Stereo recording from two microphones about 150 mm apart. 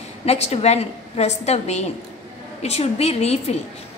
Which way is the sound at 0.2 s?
45° left (ahead or behind).